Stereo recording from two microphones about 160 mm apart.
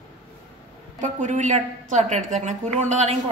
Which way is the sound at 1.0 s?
50° right (ahead or behind).